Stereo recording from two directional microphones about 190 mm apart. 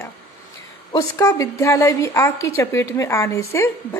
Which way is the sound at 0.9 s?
15° left (ahead or behind).